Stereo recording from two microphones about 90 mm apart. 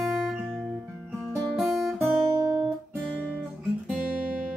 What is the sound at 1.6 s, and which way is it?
Guitar, centre (ahead or behind).